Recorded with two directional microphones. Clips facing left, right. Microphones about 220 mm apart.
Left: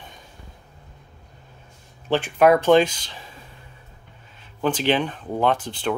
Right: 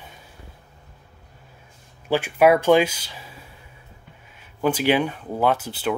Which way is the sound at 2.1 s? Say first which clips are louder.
Even; 10° right (ahead or behind).